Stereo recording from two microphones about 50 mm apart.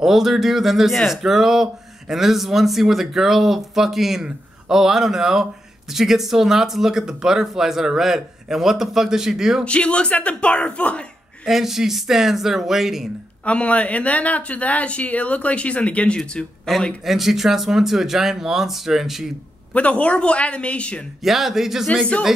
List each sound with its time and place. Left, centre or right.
0.0 s speech: centre
9.7 s speech: left
11.4 s speech: centre
13.5 s speech: left
17.0 s speech: centre
19.7 s speech: left
21.2 s speech: centre